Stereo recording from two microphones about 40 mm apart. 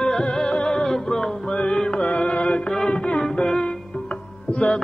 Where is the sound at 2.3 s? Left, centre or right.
Left.